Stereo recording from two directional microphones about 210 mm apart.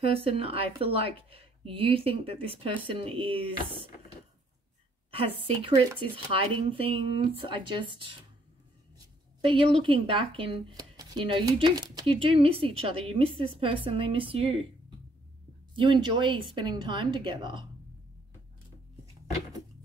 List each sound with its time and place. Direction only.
0.1 s speech: 30° right (ahead or behind)
5.1 s speech: 25° right (ahead or behind)
9.4 s speech: 25° right (ahead or behind)
15.7 s speech: 25° right (ahead or behind)